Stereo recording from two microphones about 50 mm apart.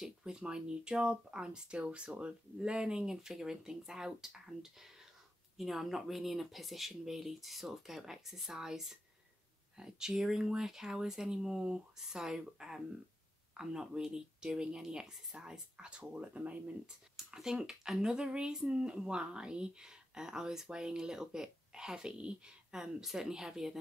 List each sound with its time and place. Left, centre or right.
0.0 s speech: centre
16.8 s speech: centre